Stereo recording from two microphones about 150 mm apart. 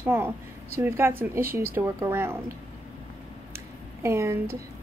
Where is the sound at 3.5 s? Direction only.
20° right (ahead or behind).